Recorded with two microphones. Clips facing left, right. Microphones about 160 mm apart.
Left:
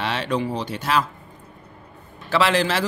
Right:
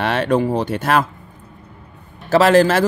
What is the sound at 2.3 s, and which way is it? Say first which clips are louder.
Speech: right 8 dB; 45° right (ahead or behind).